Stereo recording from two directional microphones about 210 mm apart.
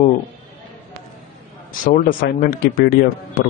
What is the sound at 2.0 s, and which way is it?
Speech, 45° left (ahead or behind).